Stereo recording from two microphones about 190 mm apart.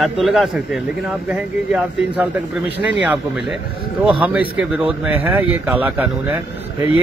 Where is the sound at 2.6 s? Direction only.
60° right (ahead or behind).